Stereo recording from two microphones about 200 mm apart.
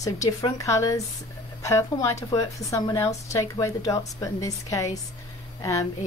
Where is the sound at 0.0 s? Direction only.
15° left (ahead or behind).